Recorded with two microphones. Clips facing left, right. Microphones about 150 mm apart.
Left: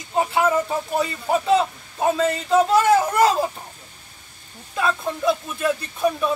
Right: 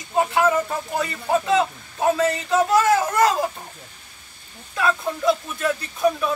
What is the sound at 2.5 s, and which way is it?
Speech, 25° left (ahead or behind).